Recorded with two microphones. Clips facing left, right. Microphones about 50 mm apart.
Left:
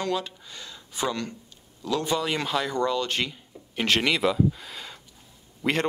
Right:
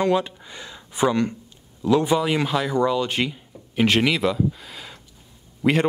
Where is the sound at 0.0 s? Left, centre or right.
Right.